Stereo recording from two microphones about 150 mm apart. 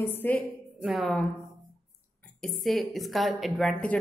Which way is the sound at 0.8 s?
Centre (ahead or behind).